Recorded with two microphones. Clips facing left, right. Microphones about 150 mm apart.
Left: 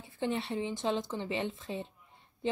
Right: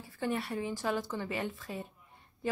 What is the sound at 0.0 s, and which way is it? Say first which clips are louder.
A woman's voice: left 1 dB; 25° left (ahead or behind).